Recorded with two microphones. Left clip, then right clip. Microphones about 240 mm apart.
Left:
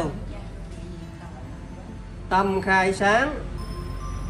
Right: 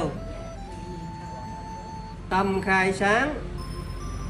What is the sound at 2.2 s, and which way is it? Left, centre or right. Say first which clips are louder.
Speech: left 3 dB; centre.